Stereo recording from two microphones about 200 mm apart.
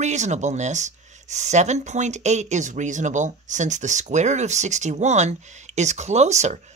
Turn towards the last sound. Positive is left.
turn(degrees=-35)  # may be behind; listen again after turning